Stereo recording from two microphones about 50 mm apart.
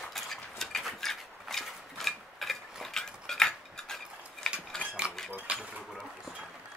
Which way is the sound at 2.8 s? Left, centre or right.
Centre.